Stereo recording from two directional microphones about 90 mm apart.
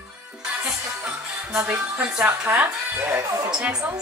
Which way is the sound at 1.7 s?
15° right (ahead or behind).